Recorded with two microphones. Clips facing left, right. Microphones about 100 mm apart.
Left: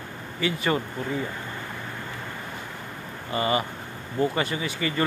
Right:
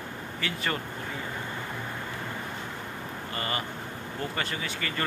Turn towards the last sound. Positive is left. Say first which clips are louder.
# left 6 dB
turn(degrees=10)  # may be behind; listen again after turning